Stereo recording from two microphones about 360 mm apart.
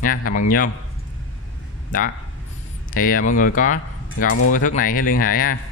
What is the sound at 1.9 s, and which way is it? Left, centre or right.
Speech, left.